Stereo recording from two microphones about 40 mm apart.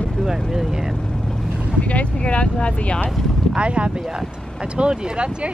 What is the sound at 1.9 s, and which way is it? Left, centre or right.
Speech, left.